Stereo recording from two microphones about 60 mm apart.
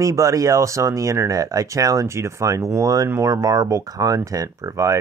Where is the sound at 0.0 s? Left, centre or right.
Right.